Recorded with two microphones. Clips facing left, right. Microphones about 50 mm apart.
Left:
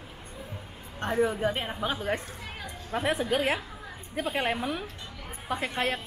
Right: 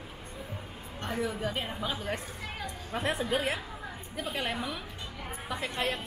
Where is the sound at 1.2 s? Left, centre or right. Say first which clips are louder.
Left 6 dB; left.